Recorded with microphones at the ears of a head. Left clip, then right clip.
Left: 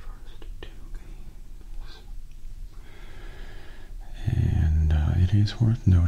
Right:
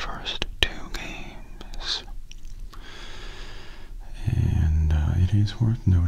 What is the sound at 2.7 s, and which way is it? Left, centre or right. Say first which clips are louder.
Snort: right 9 dB; right.